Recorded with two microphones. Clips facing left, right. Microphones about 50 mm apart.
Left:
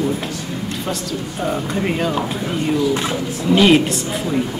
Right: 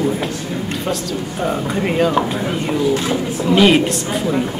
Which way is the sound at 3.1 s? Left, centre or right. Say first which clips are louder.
Right 3 dB; right.